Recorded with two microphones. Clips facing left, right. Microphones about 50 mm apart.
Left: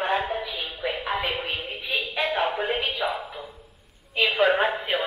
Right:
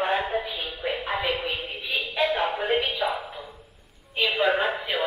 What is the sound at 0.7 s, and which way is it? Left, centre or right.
Music, centre.